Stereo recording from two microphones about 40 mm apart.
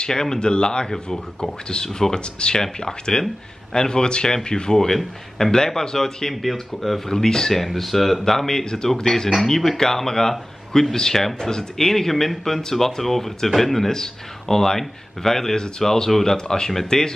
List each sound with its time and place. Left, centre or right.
0.0 s speech: centre
4.7 s speech: centre
6.4 s speech: centre
7.1 s speech: centre